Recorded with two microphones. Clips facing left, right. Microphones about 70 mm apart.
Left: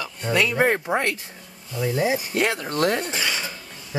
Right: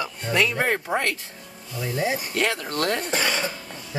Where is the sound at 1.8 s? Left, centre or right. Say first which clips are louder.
Left 3 dB; centre.